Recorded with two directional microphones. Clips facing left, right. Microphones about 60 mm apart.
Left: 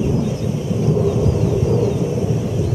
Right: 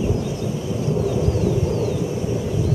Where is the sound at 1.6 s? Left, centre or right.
Left.